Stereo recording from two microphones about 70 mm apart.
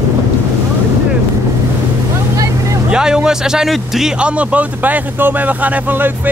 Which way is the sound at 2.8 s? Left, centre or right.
Centre.